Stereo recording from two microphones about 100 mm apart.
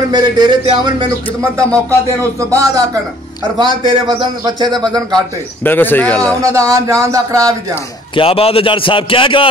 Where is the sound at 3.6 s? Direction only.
50° right (ahead or behind).